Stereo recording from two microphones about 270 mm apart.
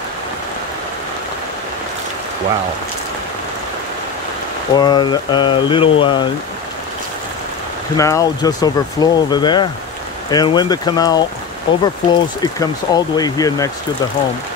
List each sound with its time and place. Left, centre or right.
4.7 s speech: centre
8.0 s speech: centre